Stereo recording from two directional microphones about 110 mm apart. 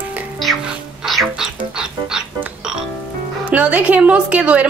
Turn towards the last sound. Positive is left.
turn(degrees=-10)  # may be behind; listen again after turning